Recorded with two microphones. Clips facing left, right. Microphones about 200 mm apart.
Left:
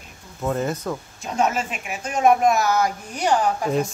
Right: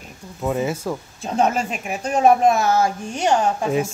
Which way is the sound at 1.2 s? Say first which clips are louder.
Right 3 dB; 30° right (ahead or behind).